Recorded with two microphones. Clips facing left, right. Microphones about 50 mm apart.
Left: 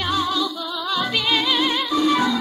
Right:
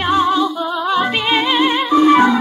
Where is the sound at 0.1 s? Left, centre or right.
Right.